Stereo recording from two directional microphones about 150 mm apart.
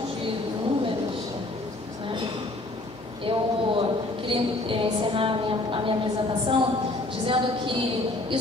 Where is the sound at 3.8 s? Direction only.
35° right (ahead or behind).